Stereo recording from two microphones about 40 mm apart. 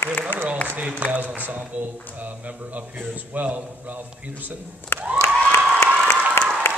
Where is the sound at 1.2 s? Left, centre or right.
Right.